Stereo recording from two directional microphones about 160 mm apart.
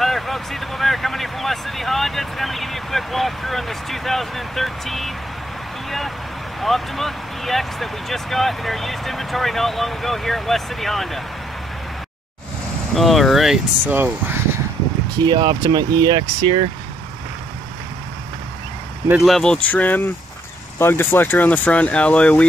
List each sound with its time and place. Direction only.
0.0 s speech: centre (ahead or behind)
12.9 s speech: centre (ahead or behind)
15.1 s speech: 30° right (ahead or behind)
19.0 s speech: centre (ahead or behind)